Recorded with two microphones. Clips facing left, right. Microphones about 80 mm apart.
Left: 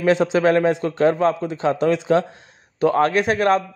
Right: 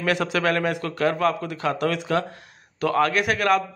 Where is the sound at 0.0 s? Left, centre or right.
Left.